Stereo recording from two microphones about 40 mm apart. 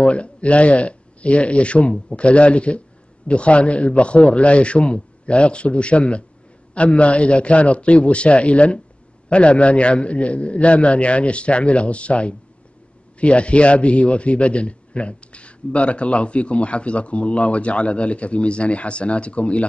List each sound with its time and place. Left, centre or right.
0.0 s a man's voice: left